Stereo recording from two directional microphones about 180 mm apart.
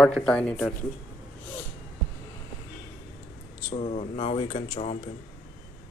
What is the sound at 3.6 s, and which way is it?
Speech, 40° left (ahead or behind).